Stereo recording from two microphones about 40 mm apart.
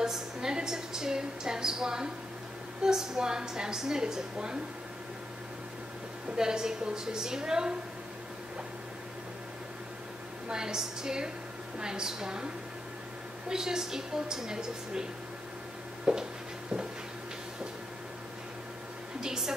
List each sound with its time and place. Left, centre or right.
0.0 s a woman's voice: centre
6.3 s a woman's voice: centre
10.5 s a woman's voice: centre
13.5 s a woman's voice: centre
16.1 s a sound: centre
19.2 s a woman's voice: centre